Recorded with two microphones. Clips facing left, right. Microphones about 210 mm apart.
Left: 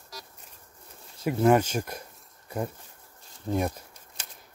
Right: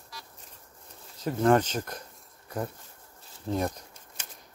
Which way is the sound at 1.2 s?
10° left (ahead or behind).